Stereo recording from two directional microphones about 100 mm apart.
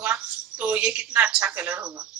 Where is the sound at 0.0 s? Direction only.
15° right (ahead or behind).